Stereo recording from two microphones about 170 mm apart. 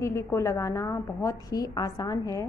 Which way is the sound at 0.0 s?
15° left (ahead or behind).